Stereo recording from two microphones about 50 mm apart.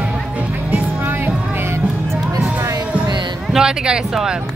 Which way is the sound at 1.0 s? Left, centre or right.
Right.